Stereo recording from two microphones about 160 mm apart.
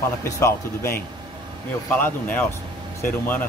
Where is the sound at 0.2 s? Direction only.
15° left (ahead or behind).